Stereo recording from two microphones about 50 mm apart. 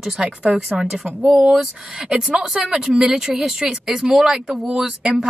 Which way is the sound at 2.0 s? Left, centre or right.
Right.